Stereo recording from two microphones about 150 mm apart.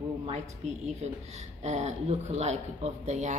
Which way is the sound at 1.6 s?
50° right (ahead or behind).